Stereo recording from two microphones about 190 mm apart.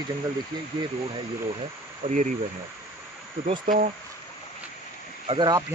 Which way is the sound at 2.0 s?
45° right (ahead or behind).